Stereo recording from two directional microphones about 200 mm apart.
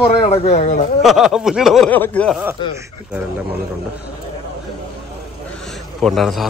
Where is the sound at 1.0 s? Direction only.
Centre (ahead or behind).